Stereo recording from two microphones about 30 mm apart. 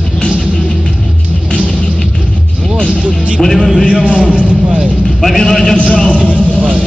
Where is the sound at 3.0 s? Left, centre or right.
Right.